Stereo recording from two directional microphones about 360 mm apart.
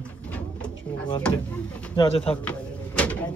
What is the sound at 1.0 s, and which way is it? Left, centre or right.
Speech, centre.